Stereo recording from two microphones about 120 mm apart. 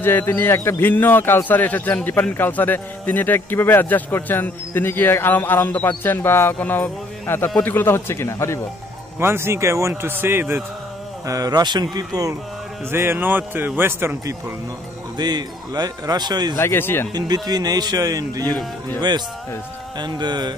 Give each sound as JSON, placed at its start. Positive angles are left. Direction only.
{"t": 0.0, "sound": "a man's voice", "side_deg": 15}
{"t": 9.2, "sound": "a man's voice", "side_deg": -20}
{"t": 11.2, "sound": "speech", "side_deg": -30}
{"t": 12.9, "sound": "a man's voice", "side_deg": -20}
{"t": 15.1, "sound": "speech", "side_deg": -35}
{"t": 16.5, "sound": "a man's voice", "side_deg": 20}
{"t": 17.1, "sound": "speech", "side_deg": -35}